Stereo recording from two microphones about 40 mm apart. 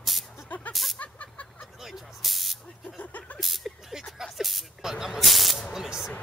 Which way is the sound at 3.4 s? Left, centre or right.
Centre.